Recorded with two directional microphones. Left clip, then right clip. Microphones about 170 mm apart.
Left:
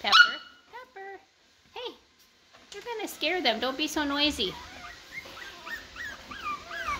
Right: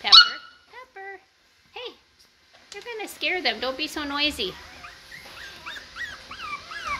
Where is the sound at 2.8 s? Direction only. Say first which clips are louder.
Right 2 dB; 15° left (ahead or behind).